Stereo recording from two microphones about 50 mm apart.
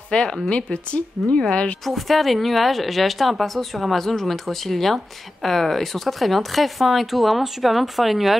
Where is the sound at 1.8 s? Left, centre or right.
Centre.